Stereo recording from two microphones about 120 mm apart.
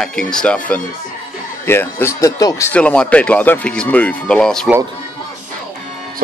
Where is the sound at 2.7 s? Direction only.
10° left (ahead or behind).